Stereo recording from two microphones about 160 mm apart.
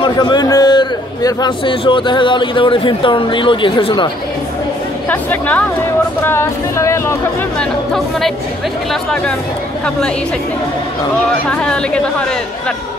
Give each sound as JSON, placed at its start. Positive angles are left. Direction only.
{"t": 0.0, "sound": "a man's voice", "side_deg": 25}
{"t": 5.1, "sound": "speech", "side_deg": 10}
{"t": 7.5, "sound": "speech", "side_deg": 5}
{"t": 9.8, "sound": "speech", "side_deg": 5}
{"t": 11.5, "sound": "speech", "side_deg": 5}